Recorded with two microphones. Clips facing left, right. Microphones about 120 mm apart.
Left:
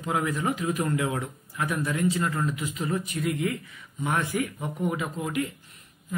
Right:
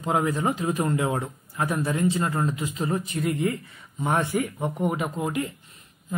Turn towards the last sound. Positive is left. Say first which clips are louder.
# right 2 dB
turn(degrees=-30)  # may be behind; listen again after turning